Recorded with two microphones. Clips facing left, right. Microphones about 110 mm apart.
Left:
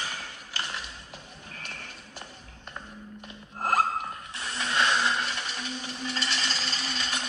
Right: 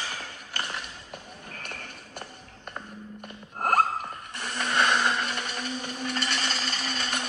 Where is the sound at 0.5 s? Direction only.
50° right (ahead or behind).